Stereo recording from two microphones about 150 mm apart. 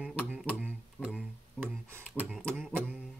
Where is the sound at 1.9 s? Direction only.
15° right (ahead or behind).